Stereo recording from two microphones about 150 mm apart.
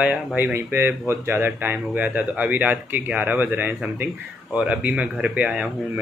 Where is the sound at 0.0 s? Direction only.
10° right (ahead or behind).